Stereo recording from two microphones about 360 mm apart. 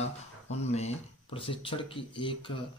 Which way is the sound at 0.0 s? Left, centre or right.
Centre.